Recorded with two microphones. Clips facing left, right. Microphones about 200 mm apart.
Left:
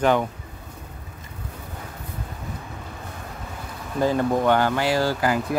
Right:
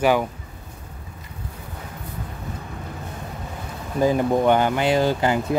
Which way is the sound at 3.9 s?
15° right (ahead or behind).